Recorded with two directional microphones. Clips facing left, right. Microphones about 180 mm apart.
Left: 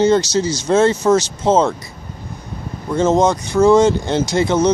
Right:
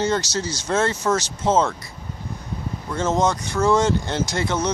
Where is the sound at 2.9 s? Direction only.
20° left (ahead or behind).